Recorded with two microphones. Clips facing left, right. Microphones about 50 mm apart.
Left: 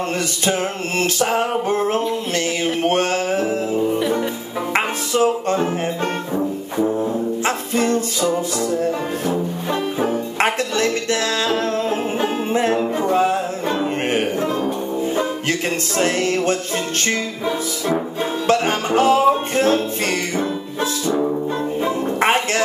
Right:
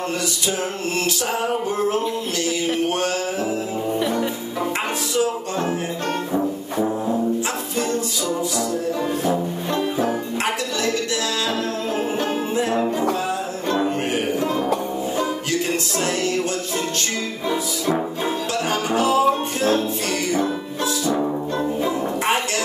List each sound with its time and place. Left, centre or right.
1.2 s a sound: left
4.7 s music: left
7.4 s music: left
9.7 s music: centre
11.4 s music: left
13.1 s music: left
16.0 s a sound: left
18.5 s music: left
21.1 s music: centre